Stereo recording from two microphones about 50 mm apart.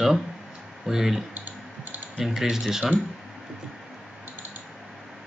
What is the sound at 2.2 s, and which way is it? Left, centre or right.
Speech, centre.